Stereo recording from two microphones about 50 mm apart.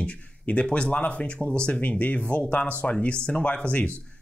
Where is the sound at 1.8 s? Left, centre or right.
Left.